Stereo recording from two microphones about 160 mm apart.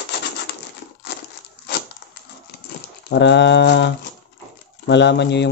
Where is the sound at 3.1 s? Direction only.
90° left.